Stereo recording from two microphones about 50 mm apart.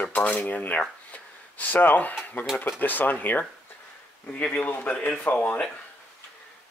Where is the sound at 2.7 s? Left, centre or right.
Left.